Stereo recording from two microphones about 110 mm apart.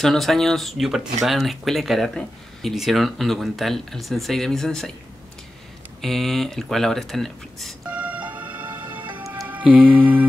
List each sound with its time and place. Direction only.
0.0 s speech: centre (ahead or behind)
5.9 s speech: centre (ahead or behind)
7.9 s music: 15° right (ahead or behind)